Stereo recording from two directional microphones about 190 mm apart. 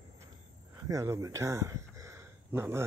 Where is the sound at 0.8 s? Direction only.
15° right (ahead or behind).